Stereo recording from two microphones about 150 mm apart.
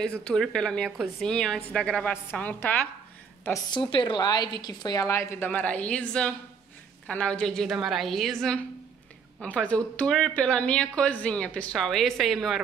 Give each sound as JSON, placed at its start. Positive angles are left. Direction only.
{"t": 0.0, "sound": "a woman's voice", "side_deg": 5}
{"t": 3.4, "sound": "a woman's voice", "side_deg": 25}